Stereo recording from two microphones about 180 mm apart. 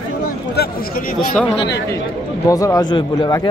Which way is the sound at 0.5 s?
55° left (ahead or behind).